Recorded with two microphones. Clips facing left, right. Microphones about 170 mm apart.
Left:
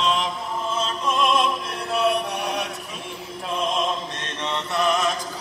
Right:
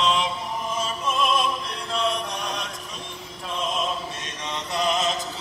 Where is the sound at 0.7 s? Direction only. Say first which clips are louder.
Left 3 dB; 10° right (ahead or behind); by 2.7 s 10° left (ahead or behind).